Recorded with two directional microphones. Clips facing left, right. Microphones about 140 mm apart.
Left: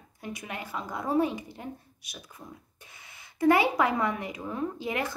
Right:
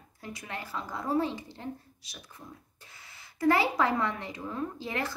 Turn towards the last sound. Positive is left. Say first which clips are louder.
# left 3 dB
turn(degrees=20)  # may be behind; listen again after turning